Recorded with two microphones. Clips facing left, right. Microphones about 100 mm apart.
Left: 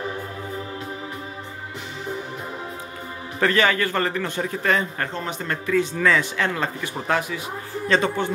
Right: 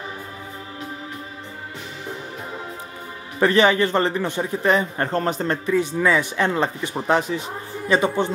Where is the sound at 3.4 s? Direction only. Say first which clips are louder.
Right 4 dB; 20° right (ahead or behind).